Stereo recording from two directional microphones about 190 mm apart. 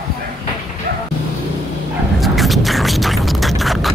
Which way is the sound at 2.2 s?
Centre (ahead or behind).